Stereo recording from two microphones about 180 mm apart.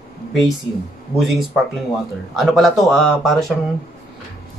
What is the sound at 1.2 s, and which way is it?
Speech, centre (ahead or behind).